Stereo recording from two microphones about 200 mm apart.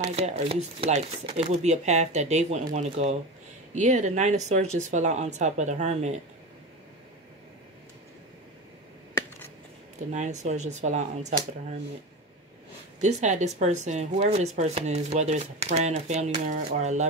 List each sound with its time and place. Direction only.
0.0 s speech: 30° right (ahead or behind)
10.1 s speech: 35° right (ahead or behind)
13.0 s speech: 35° right (ahead or behind)